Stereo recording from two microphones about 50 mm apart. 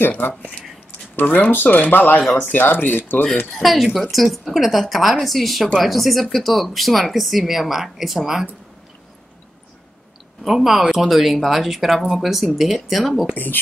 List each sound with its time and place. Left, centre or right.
0.0 s speech: left
1.2 s speech: left
3.5 s speech: centre
10.4 s speech: centre